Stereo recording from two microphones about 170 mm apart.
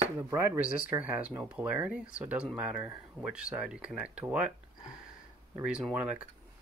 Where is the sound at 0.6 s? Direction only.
55° left (ahead or behind).